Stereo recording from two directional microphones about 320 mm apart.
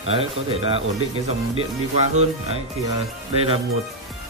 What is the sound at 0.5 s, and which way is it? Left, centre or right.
Speech, centre.